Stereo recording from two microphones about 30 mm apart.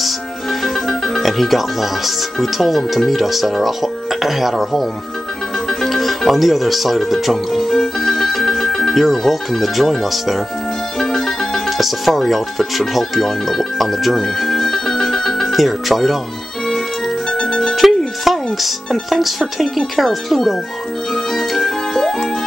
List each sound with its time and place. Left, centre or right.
0.8 s music: centre
1.2 s speech: centre
5.7 s music: centre
9.0 s speech: centre
11.0 s music: centre
11.8 s speech: centre
14.4 s music: centre
17.3 s music: left
17.7 s music: centre
19.0 s speech: centre
21.1 s music: centre